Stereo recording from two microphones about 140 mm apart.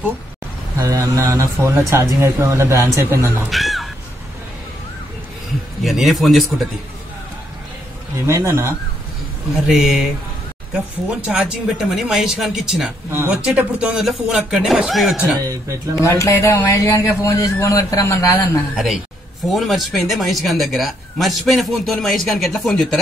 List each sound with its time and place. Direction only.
0.7 s speech: 25° right (ahead or behind)
3.4 s speech: centre (ahead or behind)
5.9 s speech: centre (ahead or behind)
8.3 s speech: 20° right (ahead or behind)
9.7 s speech: centre (ahead or behind)
13.1 s speech: 15° right (ahead or behind)
16.0 s a man's voice: 20° left (ahead or behind)
19.5 s speech: centre (ahead or behind)